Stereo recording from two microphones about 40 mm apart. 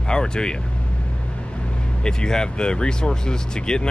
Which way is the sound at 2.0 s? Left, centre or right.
Centre.